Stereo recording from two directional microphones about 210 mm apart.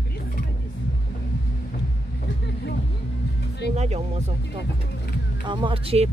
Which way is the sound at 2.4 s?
50° left (ahead or behind).